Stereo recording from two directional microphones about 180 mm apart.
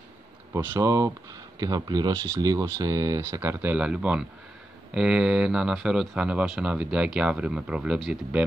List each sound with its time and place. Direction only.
0.5 s speech: 15° right (ahead or behind)